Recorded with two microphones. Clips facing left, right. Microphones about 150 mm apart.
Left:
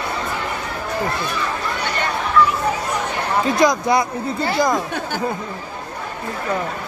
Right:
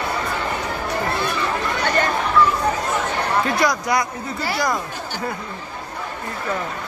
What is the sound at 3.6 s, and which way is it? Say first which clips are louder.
Speech: left 4 dB; 25° left (ahead or behind).